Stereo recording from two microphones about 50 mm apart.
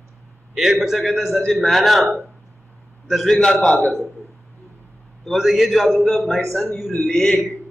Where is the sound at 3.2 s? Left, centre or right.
Centre.